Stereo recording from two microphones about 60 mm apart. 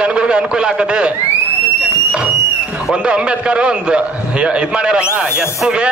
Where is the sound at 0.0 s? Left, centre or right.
Centre.